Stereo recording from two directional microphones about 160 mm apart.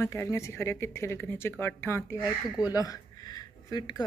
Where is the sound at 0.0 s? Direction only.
15° left (ahead or behind).